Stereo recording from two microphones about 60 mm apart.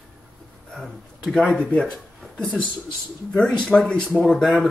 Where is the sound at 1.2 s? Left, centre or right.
Centre.